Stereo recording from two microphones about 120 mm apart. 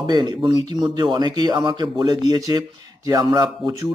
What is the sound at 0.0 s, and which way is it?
Speech, 35° right (ahead or behind).